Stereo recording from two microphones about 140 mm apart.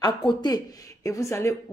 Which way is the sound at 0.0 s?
35° left (ahead or behind).